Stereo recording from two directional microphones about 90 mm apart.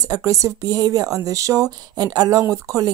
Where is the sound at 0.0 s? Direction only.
40° right (ahead or behind).